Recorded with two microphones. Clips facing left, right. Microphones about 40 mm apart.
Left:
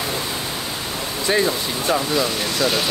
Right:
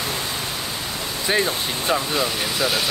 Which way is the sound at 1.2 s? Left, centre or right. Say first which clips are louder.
Left 2 dB; centre.